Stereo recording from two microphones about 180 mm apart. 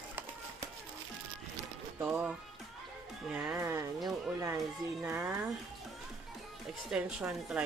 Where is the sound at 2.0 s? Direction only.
5° right (ahead or behind).